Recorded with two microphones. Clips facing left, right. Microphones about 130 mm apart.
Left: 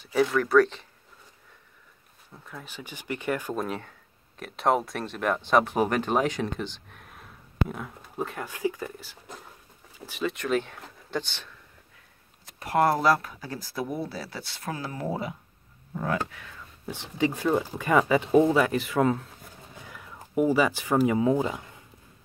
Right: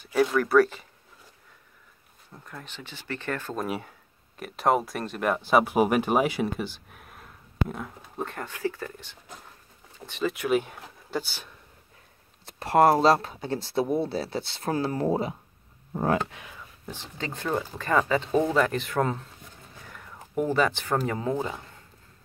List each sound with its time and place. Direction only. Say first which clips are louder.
0.0 s speech: right 1 dB; centre (ahead or behind)
2.3 s speech: left 1 dB; centre (ahead or behind)
3.5 s speech: even; 10° right (ahead or behind)
8.5 s speech: left 2 dB; 15° left (ahead or behind); by 11.5 s 10° right (ahead or behind)
12.4 s speech: right 4 dB; 30° right (ahead or behind)
16.8 s speech: left 9 dB; 10° left (ahead or behind)